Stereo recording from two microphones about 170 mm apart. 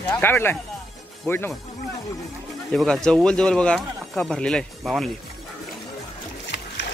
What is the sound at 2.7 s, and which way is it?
Speech, 5° left (ahead or behind).